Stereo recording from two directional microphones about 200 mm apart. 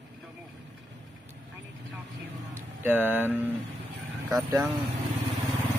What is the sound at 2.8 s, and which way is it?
Speech, 10° right (ahead or behind).